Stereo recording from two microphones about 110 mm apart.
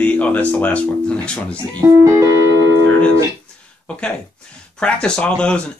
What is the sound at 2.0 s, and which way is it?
Music, 30° right (ahead or behind).